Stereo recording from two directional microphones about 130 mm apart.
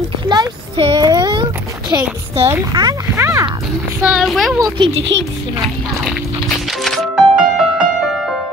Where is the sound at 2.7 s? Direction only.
30° right (ahead or behind).